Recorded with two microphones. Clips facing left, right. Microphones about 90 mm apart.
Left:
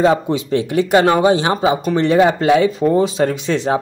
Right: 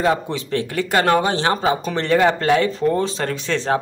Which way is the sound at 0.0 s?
20° left (ahead or behind).